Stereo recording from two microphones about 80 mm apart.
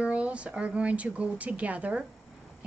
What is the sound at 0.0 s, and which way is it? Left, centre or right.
A woman's voice, centre.